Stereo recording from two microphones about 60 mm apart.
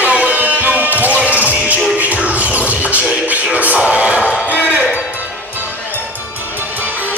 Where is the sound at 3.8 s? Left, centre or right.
Centre.